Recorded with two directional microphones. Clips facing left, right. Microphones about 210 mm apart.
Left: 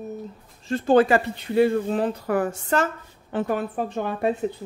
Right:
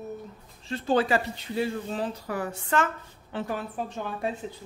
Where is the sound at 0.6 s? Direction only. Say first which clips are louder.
Left 7 dB; 50° left (ahead or behind).